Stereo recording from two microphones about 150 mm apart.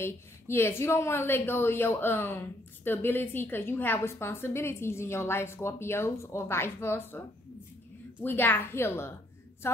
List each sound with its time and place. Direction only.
0.0 s speech: 15° left (ahead or behind)
8.2 s speech: 15° left (ahead or behind)